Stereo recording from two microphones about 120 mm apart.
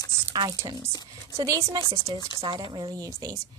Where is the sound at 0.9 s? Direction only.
30° left (ahead or behind).